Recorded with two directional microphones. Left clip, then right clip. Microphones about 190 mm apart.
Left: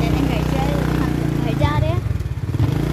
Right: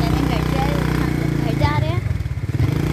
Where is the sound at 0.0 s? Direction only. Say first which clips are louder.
Even; 5° left (ahead or behind).